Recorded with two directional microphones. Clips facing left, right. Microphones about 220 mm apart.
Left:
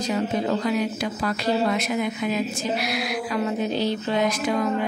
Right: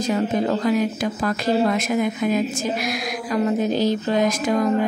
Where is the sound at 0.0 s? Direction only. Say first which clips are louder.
Right 3 dB; 45° right (ahead or behind).